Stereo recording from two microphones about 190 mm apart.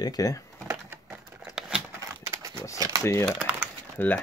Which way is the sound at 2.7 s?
20° right (ahead or behind).